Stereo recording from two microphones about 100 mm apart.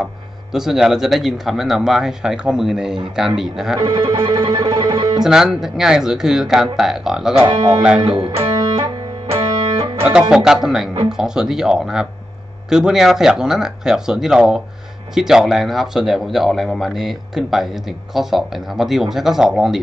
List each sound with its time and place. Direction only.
0.0 s speech: 5° right (ahead or behind)
3.8 s music: 40° right (ahead or behind)
5.2 s speech: 5° right (ahead or behind)
8.4 s music: 40° right (ahead or behind)
10.3 s speech: 5° right (ahead or behind)